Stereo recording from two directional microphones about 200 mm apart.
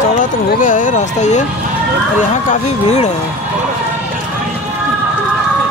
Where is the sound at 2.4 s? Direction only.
35° left (ahead or behind).